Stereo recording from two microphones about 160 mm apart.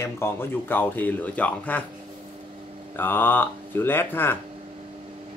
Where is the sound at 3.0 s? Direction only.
15° left (ahead or behind).